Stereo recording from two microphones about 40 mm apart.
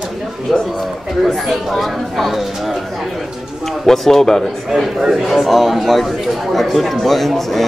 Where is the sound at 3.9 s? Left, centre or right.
Centre.